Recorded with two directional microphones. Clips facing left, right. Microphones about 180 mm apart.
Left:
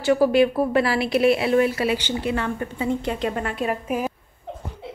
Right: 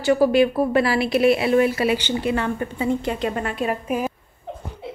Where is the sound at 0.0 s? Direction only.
Centre (ahead or behind); by 2.9 s 20° right (ahead or behind).